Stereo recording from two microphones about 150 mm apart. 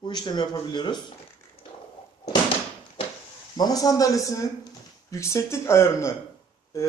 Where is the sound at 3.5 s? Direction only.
25° left (ahead or behind).